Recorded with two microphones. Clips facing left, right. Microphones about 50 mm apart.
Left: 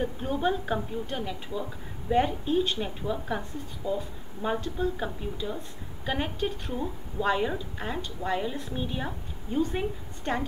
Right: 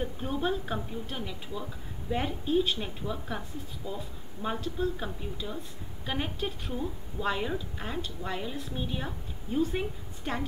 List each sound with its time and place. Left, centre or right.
0.0 s a woman's voice: centre